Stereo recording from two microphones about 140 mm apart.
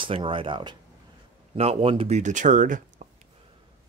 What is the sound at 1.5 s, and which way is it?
Speech, 45° right (ahead or behind).